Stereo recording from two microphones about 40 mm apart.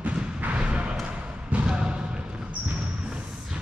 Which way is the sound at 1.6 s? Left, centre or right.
Right.